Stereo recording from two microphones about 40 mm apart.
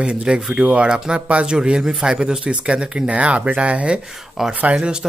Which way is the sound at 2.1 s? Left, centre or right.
Right.